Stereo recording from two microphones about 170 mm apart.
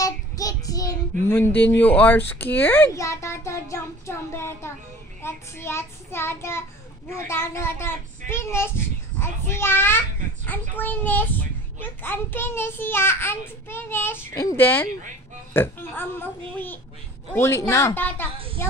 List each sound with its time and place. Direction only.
0.0 s child singing: 20° left (ahead or behind)
1.3 s a child's voice: 10° left (ahead or behind)